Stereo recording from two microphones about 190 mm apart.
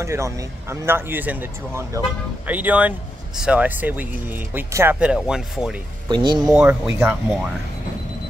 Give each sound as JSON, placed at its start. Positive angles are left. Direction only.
{"t": 0.0, "sound": "speech", "side_deg": -15}
{"t": 6.0, "sound": "speech", "side_deg": -25}
{"t": 6.5, "sound": "speech", "side_deg": -5}